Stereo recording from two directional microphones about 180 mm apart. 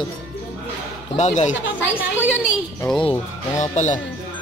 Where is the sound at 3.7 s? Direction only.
40° left (ahead or behind).